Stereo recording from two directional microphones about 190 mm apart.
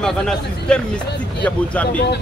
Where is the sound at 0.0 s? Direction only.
5° left (ahead or behind).